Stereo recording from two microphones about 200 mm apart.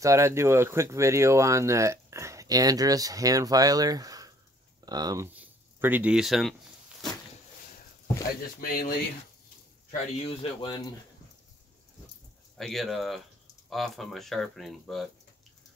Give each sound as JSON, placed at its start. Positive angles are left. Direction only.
{"t": 0.0, "sound": "speech", "side_deg": -15}
{"t": 8.5, "sound": "speech", "side_deg": 45}
{"t": 9.8, "sound": "speech", "side_deg": 30}
{"t": 12.5, "sound": "speech", "side_deg": 0}